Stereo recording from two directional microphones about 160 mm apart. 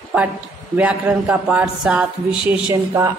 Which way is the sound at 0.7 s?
10° right (ahead or behind).